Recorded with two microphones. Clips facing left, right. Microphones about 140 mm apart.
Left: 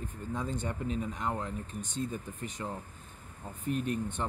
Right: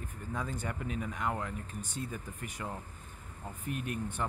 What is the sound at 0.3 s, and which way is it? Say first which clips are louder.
Speech: left 2 dB; 25° left (ahead or behind).